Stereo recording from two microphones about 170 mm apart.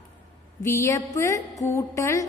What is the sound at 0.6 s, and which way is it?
A man's voice, 15° left (ahead or behind).